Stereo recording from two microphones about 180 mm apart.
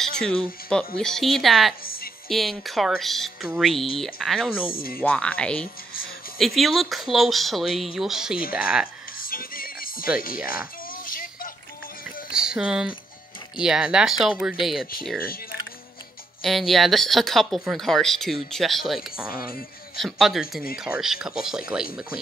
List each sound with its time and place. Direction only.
0.2 s speech: 5° left (ahead or behind)
4.7 s speech: 55° left (ahead or behind)
5.0 s speech: 5° left (ahead or behind)
9.2 s music: 55° left (ahead or behind)
10.2 s speech: 50° left (ahead or behind)
12.3 s speech: 5° right (ahead or behind)
16.4 s speech: centre (ahead or behind)
20.0 s speech: centre (ahead or behind)